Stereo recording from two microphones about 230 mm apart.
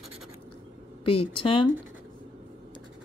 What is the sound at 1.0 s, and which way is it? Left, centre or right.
Speech, left.